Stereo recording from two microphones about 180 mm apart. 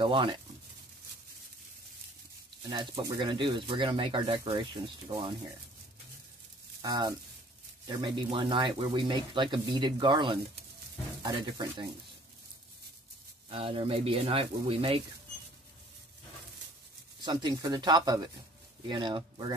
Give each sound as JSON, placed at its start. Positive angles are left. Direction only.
{"t": 0.0, "sound": "speech", "side_deg": -25}
{"t": 2.7, "sound": "speech", "side_deg": -25}
{"t": 6.8, "sound": "speech", "side_deg": -20}
{"t": 13.5, "sound": "speech", "side_deg": -30}
{"t": 17.2, "sound": "speech", "side_deg": -25}